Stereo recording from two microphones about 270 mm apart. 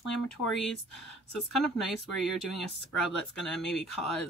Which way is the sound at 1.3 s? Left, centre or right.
Centre.